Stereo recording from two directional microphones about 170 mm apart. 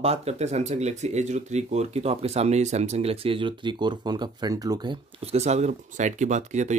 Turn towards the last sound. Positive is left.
turn(degrees=-45)  # may be behind; listen again after turning